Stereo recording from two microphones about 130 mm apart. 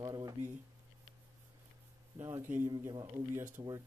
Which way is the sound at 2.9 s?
30° right (ahead or behind).